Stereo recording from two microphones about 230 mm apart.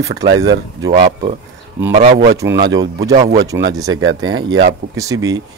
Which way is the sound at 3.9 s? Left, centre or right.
Right.